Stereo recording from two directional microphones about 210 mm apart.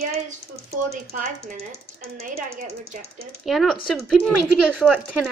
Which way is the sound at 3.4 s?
Centre (ahead or behind).